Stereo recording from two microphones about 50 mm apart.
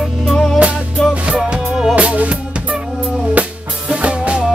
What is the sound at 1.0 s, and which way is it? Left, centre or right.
Music, centre.